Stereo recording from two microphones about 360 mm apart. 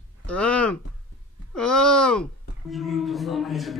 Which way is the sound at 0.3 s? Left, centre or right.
Centre.